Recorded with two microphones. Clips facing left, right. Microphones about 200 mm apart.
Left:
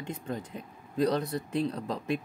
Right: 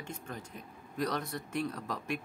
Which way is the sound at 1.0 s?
30° left (ahead or behind).